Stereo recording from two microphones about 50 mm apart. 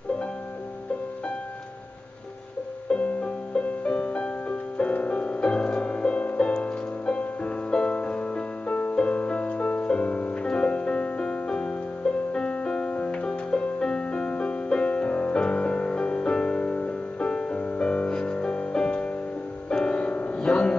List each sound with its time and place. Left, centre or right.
2.9 s music: left